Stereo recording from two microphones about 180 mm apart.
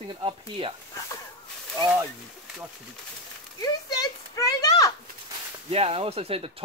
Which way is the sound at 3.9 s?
20° left (ahead or behind).